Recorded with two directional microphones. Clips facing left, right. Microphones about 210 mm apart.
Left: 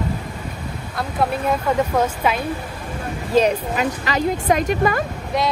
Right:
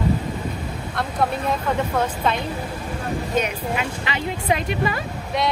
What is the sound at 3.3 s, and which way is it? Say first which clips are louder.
Speech: left 8 dB; 35° left (ahead or behind).